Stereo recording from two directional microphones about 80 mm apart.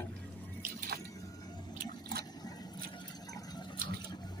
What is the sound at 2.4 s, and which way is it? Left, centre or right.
Vehicle, left.